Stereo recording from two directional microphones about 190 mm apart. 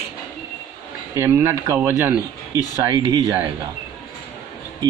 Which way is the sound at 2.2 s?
20° left (ahead or behind).